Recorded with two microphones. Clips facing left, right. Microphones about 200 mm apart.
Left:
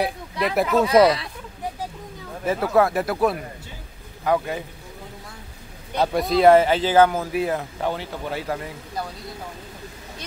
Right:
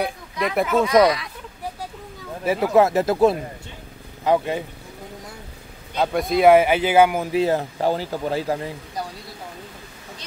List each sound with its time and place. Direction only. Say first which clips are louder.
0.0 s speech: left 1 dB; centre (ahead or behind)
1.0 s speech: left 1 dB; 30° left (ahead or behind)
2.4 s speech: right 2 dB; 10° right (ahead or behind)
5.9 s speech: even; centre (ahead or behind)
7.3 s speech: right 4 dB; 30° right (ahead or behind)